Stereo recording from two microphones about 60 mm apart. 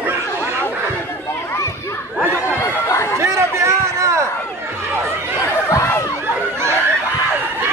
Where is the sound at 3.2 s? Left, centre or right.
Right.